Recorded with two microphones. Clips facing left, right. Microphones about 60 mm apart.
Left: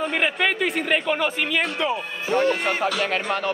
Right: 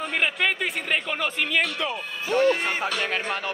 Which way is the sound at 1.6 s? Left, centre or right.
Left.